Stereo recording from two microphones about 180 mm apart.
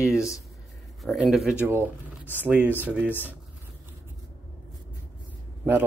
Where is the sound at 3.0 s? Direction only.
10° left (ahead or behind).